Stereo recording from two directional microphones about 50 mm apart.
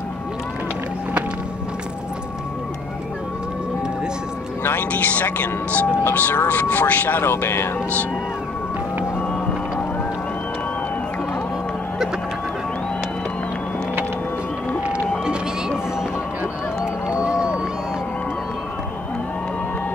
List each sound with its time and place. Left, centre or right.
4.6 s speech: left
7.2 s speech: left
17.2 s run: centre